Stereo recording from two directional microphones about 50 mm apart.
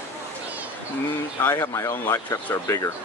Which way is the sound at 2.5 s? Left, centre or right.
Left.